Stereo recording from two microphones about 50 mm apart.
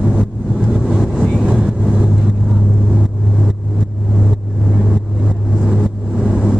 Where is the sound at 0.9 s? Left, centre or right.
Centre.